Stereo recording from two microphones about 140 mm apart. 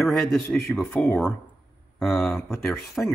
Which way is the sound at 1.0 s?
15° left (ahead or behind).